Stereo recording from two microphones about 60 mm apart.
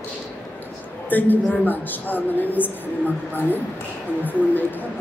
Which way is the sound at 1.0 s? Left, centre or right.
Left.